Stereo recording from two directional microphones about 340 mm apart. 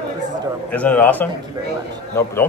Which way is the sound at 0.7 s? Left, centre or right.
Centre.